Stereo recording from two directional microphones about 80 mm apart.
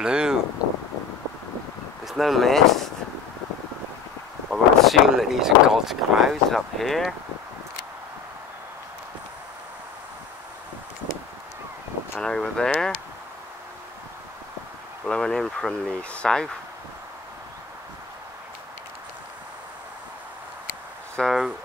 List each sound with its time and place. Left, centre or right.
0.0 s a sound: centre
2.0 s speech: centre
4.5 s speech: centre
12.2 s speech: centre
15.0 s speech: centre
21.3 s a sound: centre